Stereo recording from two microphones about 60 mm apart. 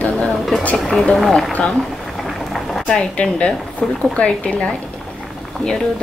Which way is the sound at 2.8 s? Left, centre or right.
Centre.